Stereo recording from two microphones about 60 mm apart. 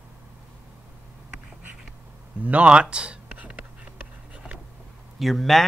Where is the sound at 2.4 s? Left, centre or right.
Right.